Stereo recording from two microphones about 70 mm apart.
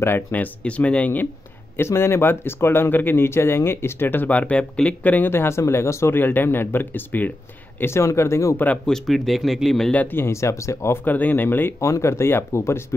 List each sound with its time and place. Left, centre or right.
0.3 s speech: left
1.8 s speech: left
5.3 s speech: left
6.1 s speech: left
7.8 s speech: left
8.8 s speech: centre
9.9 s speech: left
11.1 s speech: left
11.8 s speech: left